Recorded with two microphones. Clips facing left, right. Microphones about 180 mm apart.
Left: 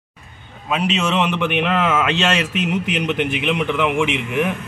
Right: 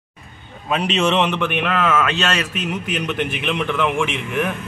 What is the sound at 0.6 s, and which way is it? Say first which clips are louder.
A man's voice: right 1 dB; 5° left (ahead or behind).